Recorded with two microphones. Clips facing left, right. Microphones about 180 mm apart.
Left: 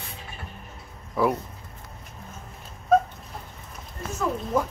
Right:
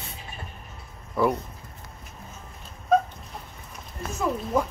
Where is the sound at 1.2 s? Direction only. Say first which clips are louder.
Even; 5° left (ahead or behind).